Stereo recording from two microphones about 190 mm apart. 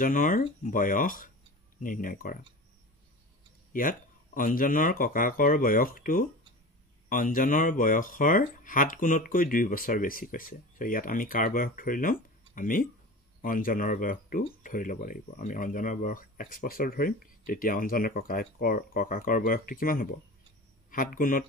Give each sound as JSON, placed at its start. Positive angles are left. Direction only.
{"t": 0.0, "sound": "speech", "side_deg": 45}
{"t": 3.7, "sound": "speech", "side_deg": 45}